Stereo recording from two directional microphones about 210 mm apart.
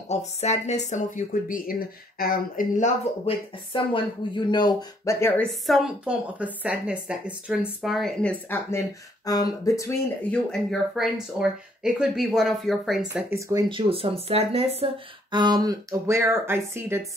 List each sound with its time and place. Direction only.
0.1 s speech: 30° left (ahead or behind)
3.3 s speech: 25° left (ahead or behind)
5.5 s a woman's voice: centre (ahead or behind)
10.5 s speech: centre (ahead or behind)